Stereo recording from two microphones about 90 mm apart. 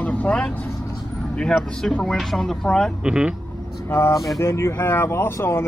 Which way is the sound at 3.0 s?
10° right (ahead or behind).